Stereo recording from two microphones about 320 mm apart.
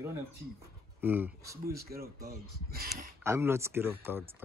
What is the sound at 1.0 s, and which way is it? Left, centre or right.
Speech, centre.